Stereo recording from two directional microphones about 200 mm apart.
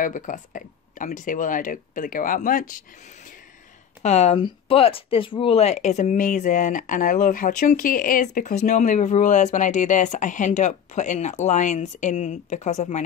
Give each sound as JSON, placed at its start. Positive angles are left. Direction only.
{"t": 0.0, "sound": "speech", "side_deg": 40}
{"t": 4.0, "sound": "speech", "side_deg": 35}